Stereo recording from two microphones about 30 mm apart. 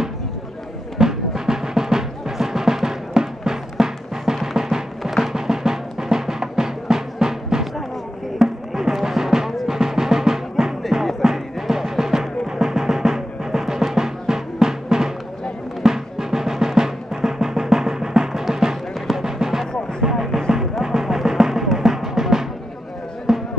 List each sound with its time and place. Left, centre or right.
0.9 s music: centre